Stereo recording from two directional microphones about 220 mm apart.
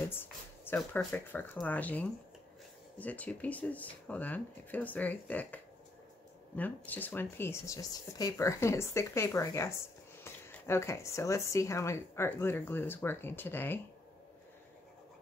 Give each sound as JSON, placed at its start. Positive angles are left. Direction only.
{"t": 0.1, "sound": "speech", "side_deg": 10}